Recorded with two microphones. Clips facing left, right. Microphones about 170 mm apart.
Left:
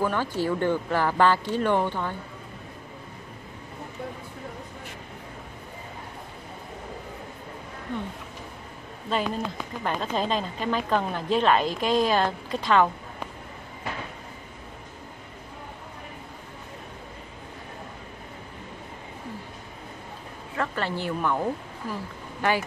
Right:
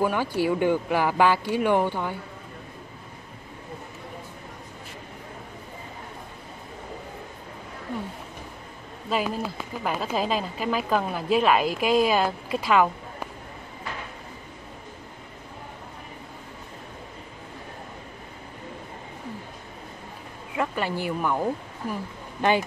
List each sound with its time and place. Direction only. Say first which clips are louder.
0.0 s a woman's voice: right 2 dB; 10° right (ahead or behind)
9.1 s a woman's voice: right 1 dB; 5° right (ahead or behind)
20.5 s speech: right 2 dB; 15° right (ahead or behind)
22.4 s speech: right 3 dB; 20° right (ahead or behind)